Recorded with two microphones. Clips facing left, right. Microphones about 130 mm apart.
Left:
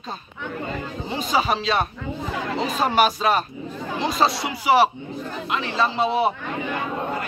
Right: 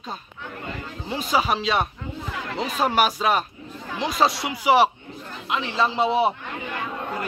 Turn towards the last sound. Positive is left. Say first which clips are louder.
# even
turn(degrees=-20)  # may be behind; listen again after turning